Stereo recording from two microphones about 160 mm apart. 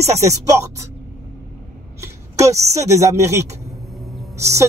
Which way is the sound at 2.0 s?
20° right (ahead or behind).